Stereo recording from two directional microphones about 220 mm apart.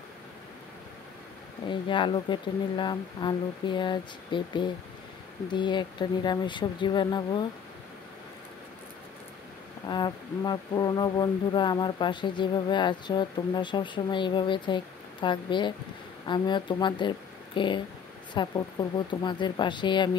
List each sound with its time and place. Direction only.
1.7 s speech: 20° left (ahead or behind)
9.8 s speech: 20° left (ahead or behind)